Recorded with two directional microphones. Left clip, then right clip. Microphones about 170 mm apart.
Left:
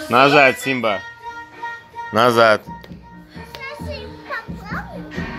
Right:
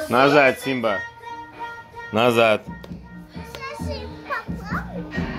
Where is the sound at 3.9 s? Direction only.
50° right (ahead or behind).